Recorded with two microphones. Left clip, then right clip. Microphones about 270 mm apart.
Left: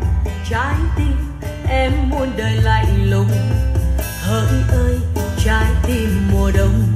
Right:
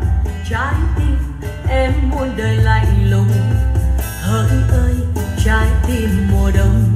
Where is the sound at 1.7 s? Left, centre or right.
Centre.